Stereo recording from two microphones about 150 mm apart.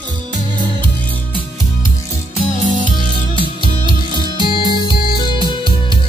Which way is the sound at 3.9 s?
30° right (ahead or behind).